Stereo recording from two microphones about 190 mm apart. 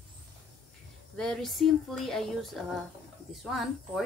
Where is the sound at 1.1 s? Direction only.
5° left (ahead or behind).